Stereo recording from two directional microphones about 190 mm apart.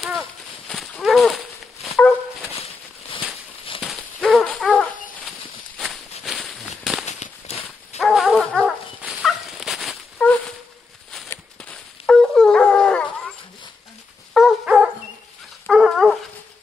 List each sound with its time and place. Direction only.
0.7 s horse: centre (ahead or behind)
1.9 s dog: 10° left (ahead or behind)
3.8 s hoot: 5° left (ahead or behind)
6.2 s a sound: centre (ahead or behind)
7.1 s dog: 35° left (ahead or behind)
8.0 s dog: centre (ahead or behind)
10.1 s a sound: 10° left (ahead or behind)
11.2 s dog: 5° left (ahead or behind)
14.3 s dog: 5° right (ahead or behind)